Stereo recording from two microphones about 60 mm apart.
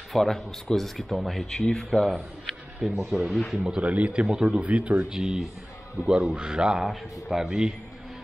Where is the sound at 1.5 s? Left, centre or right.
Centre.